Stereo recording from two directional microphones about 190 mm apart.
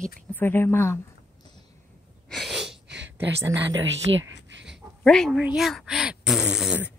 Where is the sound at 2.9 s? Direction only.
65° right (ahead or behind).